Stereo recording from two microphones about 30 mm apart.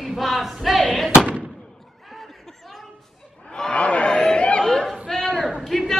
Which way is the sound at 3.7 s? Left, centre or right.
Left.